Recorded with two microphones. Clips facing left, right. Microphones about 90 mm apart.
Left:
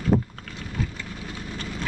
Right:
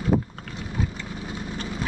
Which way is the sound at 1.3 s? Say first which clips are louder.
Right 3 dB; 15° right (ahead or behind).